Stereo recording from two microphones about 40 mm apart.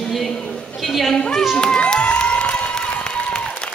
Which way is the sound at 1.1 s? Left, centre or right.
Left.